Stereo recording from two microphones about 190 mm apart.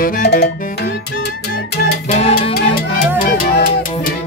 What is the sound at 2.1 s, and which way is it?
Salsa music, 30° left (ahead or behind).